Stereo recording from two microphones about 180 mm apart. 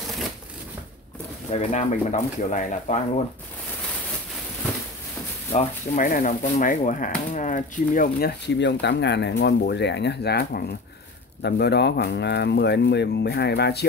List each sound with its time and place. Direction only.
1.5 s speech: 35° left (ahead or behind)
5.5 s speech: 45° left (ahead or behind); by 13.8 s 65° left (ahead or behind)